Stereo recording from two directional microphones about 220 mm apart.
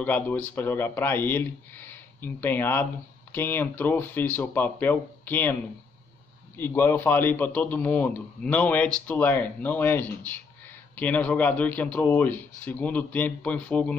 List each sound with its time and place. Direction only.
0.0 s a man's voice: 10° left (ahead or behind)